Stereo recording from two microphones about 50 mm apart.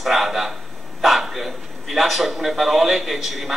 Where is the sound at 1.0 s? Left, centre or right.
Centre.